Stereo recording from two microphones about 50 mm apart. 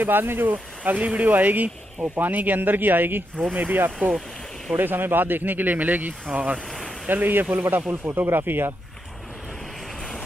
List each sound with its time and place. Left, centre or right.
0.0 s speech: right
0.5 s speech: right
6.3 s speech: right
7.1 s speech: right